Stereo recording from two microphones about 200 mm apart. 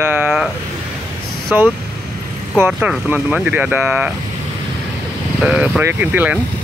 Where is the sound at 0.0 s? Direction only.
10° right (ahead or behind).